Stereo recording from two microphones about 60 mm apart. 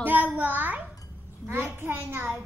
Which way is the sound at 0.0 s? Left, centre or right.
Right.